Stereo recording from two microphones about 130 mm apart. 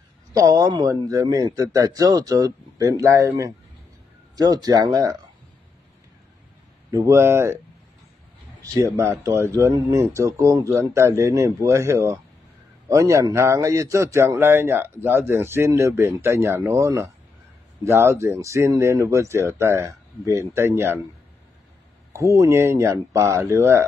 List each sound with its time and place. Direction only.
0.4 s speech: 25° right (ahead or behind)
6.9 s speech: 25° right (ahead or behind)
8.7 s speech: 25° right (ahead or behind)
22.1 s speech: 25° right (ahead or behind)